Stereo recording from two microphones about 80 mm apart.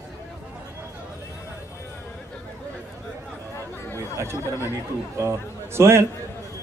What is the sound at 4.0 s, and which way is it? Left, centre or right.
Chatter, right.